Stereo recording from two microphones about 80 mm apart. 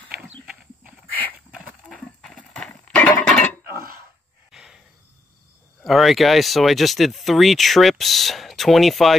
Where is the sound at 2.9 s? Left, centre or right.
Centre.